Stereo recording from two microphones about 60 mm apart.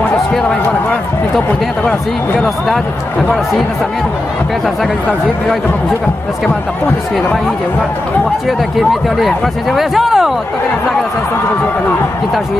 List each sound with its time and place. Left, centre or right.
1.9 s speech: centre
8.5 s speech: centre